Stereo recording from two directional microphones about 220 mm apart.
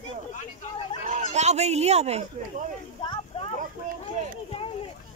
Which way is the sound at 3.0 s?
25° left (ahead or behind).